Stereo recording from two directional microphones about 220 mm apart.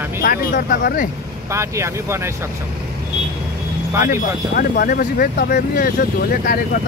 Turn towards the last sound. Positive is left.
turn(degrees=40)  # may be behind; listen again after turning